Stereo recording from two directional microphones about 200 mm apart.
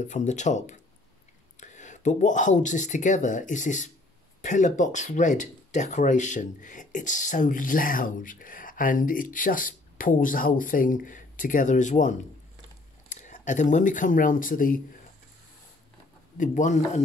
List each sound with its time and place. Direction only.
0.0 s speech: 35° left (ahead or behind)
16.3 s speech: 40° left (ahead or behind)